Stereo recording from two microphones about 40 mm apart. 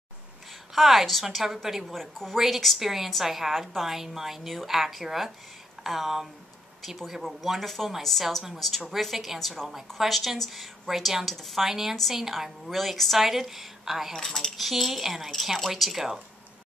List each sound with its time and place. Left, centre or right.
0.7 s speech: centre
2.0 s speech: centre
2.3 s speech: centre
3.3 s a woman's voice: centre
14.1 s speech: centre
14.6 s speech: centre